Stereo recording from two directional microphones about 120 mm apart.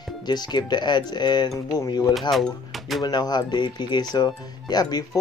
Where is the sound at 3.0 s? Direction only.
35° left (ahead or behind).